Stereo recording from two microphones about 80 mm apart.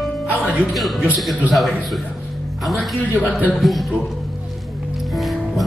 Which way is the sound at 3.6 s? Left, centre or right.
Centre.